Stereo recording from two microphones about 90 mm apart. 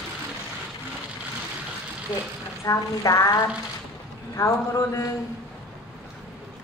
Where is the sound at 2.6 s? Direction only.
35° left (ahead or behind).